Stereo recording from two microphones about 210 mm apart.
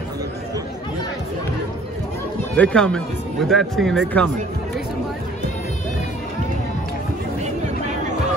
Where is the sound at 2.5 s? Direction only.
5° left (ahead or behind).